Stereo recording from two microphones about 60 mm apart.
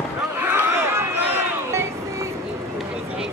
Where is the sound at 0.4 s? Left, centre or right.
Right.